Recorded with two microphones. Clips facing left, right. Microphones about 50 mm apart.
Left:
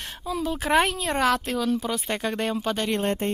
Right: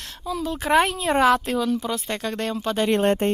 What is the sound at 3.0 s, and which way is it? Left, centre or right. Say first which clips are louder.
Speech: right 6 dB; right.